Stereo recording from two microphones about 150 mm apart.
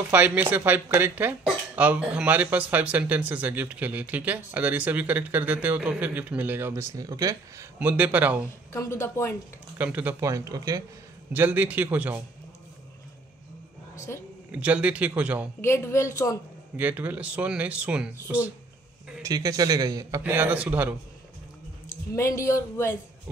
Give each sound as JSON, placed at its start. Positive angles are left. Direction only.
{"t": 0.1, "sound": "speech", "side_deg": -10}
{"t": 7.8, "sound": "speech", "side_deg": -10}
{"t": 8.7, "sound": "a man's voice", "side_deg": 20}
{"t": 9.8, "sound": "a man's voice", "side_deg": -10}
{"t": 11.3, "sound": "speech", "side_deg": -15}
{"t": 14.5, "sound": "speech", "side_deg": -10}
{"t": 15.6, "sound": "a man's voice", "side_deg": 20}
{"t": 16.7, "sound": "speech", "side_deg": -10}
{"t": 19.2, "sound": "a man's voice", "side_deg": -25}
{"t": 22.1, "sound": "a man's voice", "side_deg": 20}